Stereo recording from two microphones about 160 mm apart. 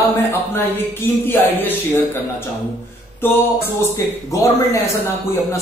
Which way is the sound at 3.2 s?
15° left (ahead or behind).